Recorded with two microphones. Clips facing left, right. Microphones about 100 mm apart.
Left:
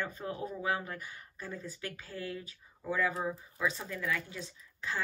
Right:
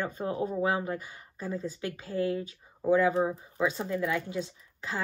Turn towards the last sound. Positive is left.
turn(degrees=-20)  # may be behind; listen again after turning